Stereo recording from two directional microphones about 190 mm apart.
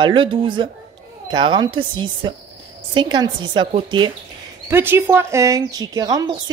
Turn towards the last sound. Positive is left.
turn(degrees=-20)  # may be behind; listen again after turning